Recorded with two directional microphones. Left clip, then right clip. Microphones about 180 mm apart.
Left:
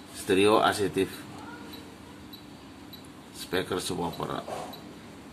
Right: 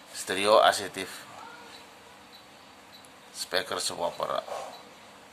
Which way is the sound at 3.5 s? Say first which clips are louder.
Even; 30° right (ahead or behind).